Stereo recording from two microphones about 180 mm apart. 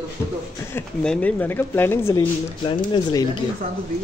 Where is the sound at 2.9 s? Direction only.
25° left (ahead or behind).